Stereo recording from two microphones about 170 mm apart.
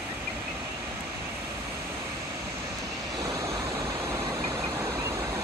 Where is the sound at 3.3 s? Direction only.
20° right (ahead or behind).